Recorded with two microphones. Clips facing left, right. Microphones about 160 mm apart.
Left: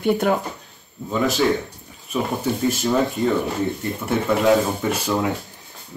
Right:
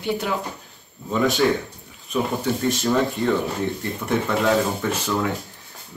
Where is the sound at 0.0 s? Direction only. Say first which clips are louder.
Left 6 dB; 50° left (ahead or behind).